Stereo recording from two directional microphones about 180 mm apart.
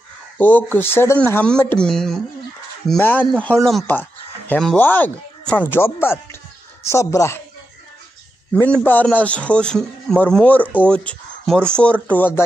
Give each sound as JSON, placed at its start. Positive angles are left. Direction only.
{"t": 0.4, "sound": "a man's voice", "side_deg": 10}
{"t": 8.5, "sound": "a man's voice", "side_deg": 10}